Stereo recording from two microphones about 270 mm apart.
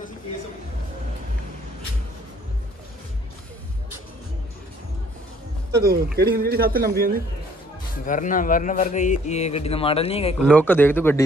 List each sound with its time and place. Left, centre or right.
5.7 s a man's voice: right
8.0 s a man's voice: left
10.5 s speech: centre